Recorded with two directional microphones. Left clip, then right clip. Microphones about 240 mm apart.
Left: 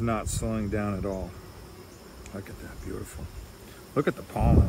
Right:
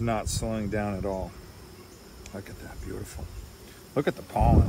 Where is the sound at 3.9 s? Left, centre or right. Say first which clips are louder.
Even; centre.